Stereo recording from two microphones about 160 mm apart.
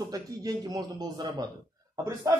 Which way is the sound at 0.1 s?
25° right (ahead or behind).